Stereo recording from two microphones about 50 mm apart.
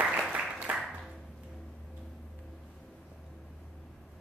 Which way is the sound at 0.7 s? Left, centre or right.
Right.